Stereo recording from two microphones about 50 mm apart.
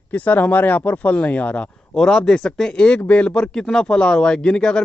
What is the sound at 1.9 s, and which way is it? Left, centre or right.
A man's voice, centre.